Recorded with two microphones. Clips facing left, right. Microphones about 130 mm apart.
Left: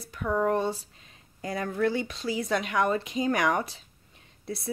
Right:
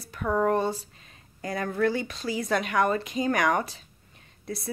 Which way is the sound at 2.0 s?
20° left (ahead or behind).